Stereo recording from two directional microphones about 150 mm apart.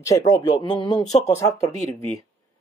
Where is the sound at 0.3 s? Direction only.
30° left (ahead or behind).